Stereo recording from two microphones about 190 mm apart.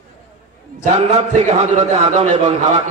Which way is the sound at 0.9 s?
35° right (ahead or behind).